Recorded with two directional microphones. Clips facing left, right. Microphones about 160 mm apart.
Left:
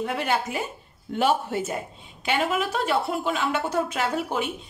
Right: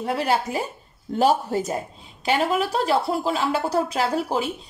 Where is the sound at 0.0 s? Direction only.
35° right (ahead or behind).